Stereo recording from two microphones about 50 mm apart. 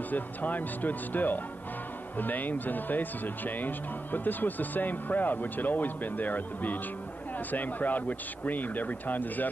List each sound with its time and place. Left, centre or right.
0.1 s speech: left